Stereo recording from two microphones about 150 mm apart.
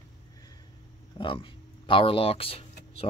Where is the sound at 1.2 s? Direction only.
35° left (ahead or behind).